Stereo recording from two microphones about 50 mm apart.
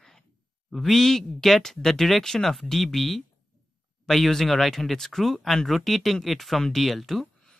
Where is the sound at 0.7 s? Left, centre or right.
Centre.